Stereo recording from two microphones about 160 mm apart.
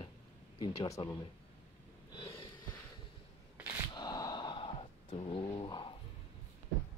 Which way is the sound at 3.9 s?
25° left (ahead or behind).